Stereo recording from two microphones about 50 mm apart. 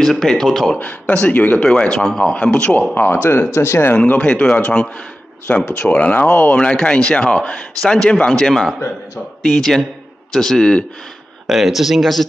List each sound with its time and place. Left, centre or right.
0.0 s speech: centre
0.7 s speech: left
1.6 s a man's voice: centre
2.9 s speech: left
3.5 s speech: left
3.9 s a man's voice: left
5.7 s speech: left
6.5 s a man's voice: left
11.4 s speech: centre